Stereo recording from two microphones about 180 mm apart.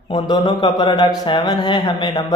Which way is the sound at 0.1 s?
25° left (ahead or behind).